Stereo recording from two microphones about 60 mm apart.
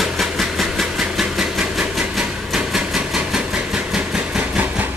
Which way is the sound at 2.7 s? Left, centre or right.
Centre.